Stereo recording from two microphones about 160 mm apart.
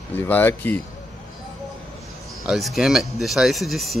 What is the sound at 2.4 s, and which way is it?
Speech, centre (ahead or behind).